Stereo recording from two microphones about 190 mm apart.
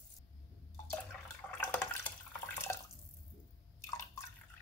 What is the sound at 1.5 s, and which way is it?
Water, 10° left (ahead or behind).